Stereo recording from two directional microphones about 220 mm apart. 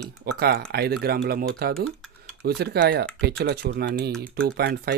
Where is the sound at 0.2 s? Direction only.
45° right (ahead or behind).